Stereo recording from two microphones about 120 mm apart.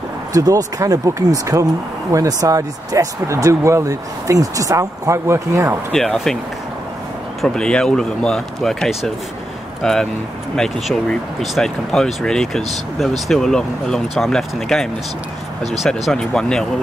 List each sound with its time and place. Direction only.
0.3 s speech: 30° right (ahead or behind)
5.9 s speech: 5° left (ahead or behind)
7.4 s speech: 5° left (ahead or behind)